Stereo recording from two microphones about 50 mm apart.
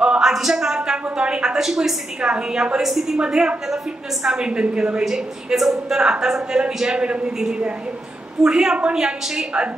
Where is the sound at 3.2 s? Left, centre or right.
Centre.